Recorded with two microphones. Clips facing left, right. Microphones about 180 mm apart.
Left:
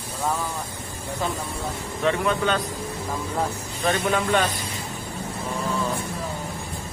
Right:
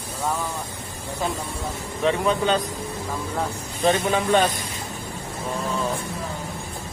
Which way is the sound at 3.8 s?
20° right (ahead or behind).